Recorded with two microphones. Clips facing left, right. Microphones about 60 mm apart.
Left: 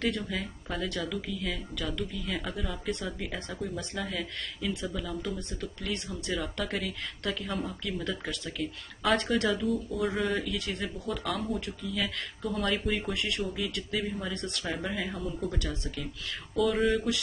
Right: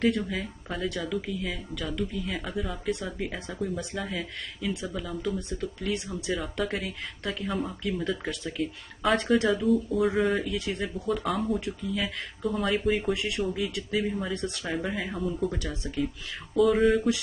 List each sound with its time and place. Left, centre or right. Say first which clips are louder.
0.3 s speech: right 1 dB; centre
9.0 s speech: right 3 dB; centre
9.4 s speech: right 3 dB; centre
9.7 s speech: right 6 dB; centre
10.4 s speech: right 3 dB; centre
11.2 s speech: right 4 dB; centre
15.7 s speech: right 6 dB; centre
16.5 s speech: right 5 dB; centre